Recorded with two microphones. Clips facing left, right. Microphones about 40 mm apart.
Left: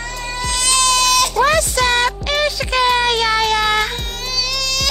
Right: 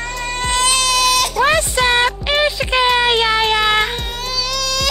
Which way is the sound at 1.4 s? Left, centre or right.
Right.